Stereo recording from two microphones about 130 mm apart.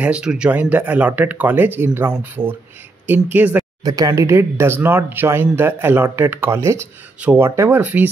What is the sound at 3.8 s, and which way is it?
Speech, 30° right (ahead or behind).